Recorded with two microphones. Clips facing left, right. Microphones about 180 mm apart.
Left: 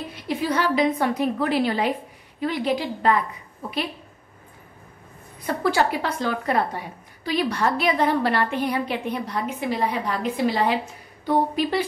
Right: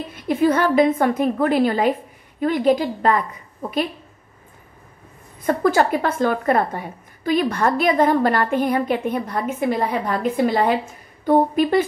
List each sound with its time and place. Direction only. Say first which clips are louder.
0.1 s a woman's voice: right 8 dB; 55° right (ahead or behind)
5.5 s a woman's voice: right 5 dB; 45° right (ahead or behind)